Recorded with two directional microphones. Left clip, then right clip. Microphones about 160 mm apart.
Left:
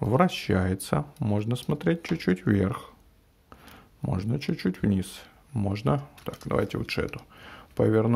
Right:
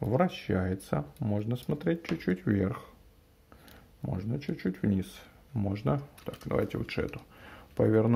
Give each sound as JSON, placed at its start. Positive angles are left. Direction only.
{"t": 0.0, "sound": "speech", "side_deg": 30}
{"t": 4.0, "sound": "speech", "side_deg": 40}
{"t": 7.3, "sound": "a sound", "side_deg": 20}